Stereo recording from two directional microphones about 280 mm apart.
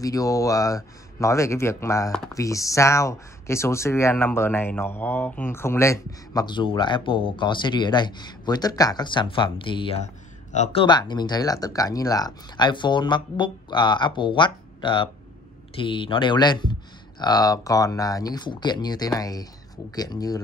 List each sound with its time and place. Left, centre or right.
0.0 s speech: centre